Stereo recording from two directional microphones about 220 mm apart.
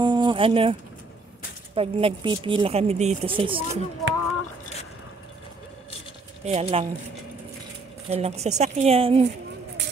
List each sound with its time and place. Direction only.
0.0 s a sound: 20° right (ahead or behind)
1.8 s speech: 25° right (ahead or behind)
6.4 s speech: 25° right (ahead or behind)
8.1 s speech: 30° right (ahead or behind)